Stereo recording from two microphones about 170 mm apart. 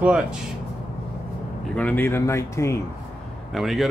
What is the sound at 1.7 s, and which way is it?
Speech, 10° left (ahead or behind).